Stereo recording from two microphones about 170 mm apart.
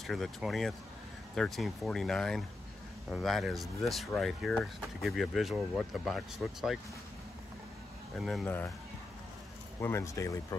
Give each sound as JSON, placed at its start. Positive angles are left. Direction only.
{"t": 0.0, "sound": "speech", "side_deg": 0}
{"t": 8.2, "sound": "speech", "side_deg": 0}
{"t": 9.8, "sound": "speech", "side_deg": 15}